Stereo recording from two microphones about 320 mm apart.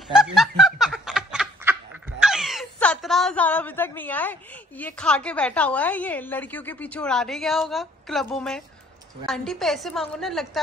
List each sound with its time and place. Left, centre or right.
0.1 s snicker: centre
9.2 s a woman's voice: centre